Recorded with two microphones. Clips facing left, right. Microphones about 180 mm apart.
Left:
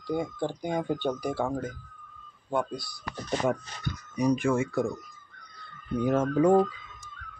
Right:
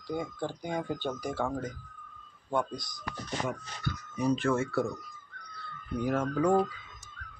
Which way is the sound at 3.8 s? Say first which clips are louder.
Left 3 dB; 15° left (ahead or behind).